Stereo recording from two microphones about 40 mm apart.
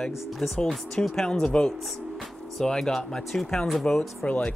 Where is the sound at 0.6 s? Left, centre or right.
Centre.